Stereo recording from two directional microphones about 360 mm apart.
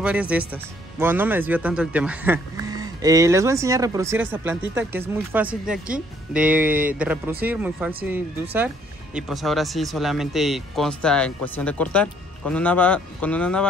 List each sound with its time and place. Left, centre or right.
0.0 s speech: centre